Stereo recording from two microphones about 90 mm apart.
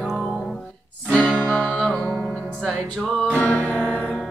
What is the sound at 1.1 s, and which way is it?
Music, 15° left (ahead or behind).